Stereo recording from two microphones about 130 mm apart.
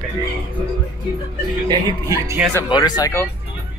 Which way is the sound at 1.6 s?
30° right (ahead or behind).